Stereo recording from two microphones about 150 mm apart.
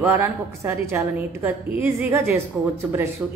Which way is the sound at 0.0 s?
15° right (ahead or behind).